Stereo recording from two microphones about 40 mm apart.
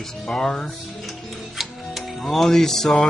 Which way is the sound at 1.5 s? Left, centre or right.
Centre.